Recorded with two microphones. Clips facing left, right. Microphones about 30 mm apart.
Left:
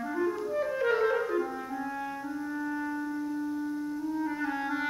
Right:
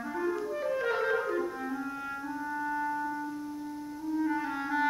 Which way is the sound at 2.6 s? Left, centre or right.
Centre.